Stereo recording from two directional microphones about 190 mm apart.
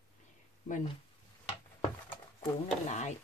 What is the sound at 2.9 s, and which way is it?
Speech, 35° left (ahead or behind).